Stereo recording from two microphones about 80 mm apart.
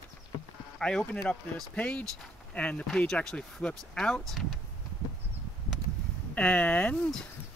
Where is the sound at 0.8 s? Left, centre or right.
Centre.